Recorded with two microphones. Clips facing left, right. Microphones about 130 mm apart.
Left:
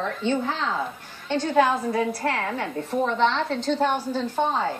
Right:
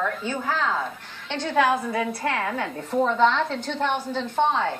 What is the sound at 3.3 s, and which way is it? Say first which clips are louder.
Speech: left 1 dB; 35° left (ahead or behind).